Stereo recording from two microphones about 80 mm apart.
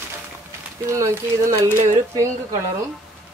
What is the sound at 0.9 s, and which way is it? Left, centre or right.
Speech, right.